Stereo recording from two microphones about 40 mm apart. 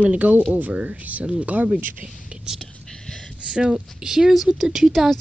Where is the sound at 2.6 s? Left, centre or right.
Centre.